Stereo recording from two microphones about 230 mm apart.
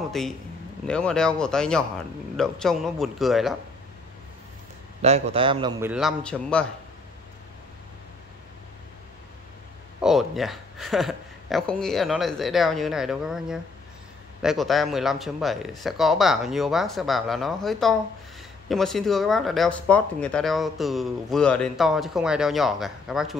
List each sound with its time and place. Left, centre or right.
0.2 s speech: centre
5.0 s a man's voice: right
5.9 s speech: centre
10.0 s speech: centre